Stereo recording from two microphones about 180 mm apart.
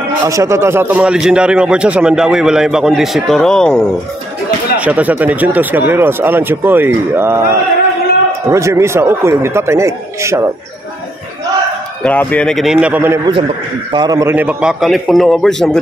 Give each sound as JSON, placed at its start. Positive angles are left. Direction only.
{"t": 0.2, "sound": "a man's voice", "side_deg": -20}
{"t": 4.7, "sound": "speech", "side_deg": -10}
{"t": 12.0, "sound": "a man's voice", "side_deg": 10}
{"t": 13.2, "sound": "a man's voice", "side_deg": -25}
{"t": 14.3, "sound": "a man's voice", "side_deg": -10}